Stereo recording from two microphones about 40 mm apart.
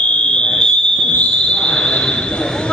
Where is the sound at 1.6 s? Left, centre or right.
Left.